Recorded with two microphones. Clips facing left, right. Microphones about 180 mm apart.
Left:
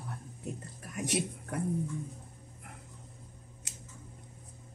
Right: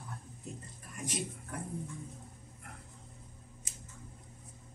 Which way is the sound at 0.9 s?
70° left (ahead or behind).